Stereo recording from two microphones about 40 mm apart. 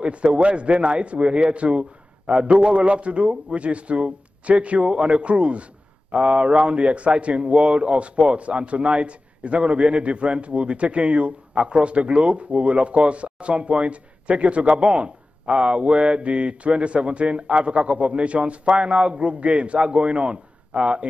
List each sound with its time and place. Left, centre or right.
0.0 s a man's voice: right